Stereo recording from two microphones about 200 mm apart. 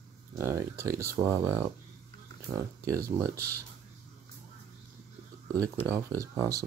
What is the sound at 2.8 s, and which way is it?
Speech, 15° right (ahead or behind).